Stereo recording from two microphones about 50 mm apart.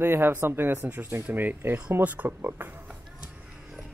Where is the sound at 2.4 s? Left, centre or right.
Right.